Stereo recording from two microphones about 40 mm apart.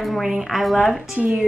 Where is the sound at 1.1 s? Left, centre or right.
Right.